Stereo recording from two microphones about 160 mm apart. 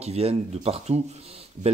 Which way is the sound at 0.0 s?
40° right (ahead or behind).